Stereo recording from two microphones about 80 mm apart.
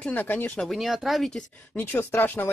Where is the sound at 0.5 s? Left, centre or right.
Centre.